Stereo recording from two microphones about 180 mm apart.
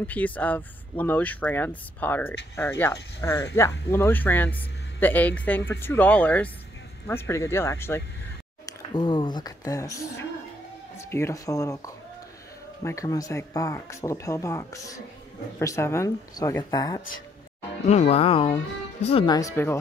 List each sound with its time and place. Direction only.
0.0 s speech: 10° left (ahead or behind)
8.6 s speech: 25° left (ahead or behind)
17.8 s speech: 40° left (ahead or behind)
19.3 s speech: 15° left (ahead or behind)